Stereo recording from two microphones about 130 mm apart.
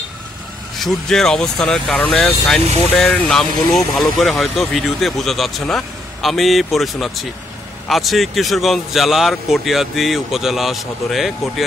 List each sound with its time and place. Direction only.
0.7 s speech: centre (ahead or behind)